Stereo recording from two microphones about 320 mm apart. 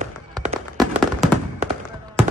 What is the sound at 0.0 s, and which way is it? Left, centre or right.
Music, centre.